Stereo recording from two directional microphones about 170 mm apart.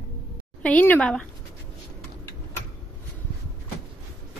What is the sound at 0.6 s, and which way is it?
Speech, 10° left (ahead or behind).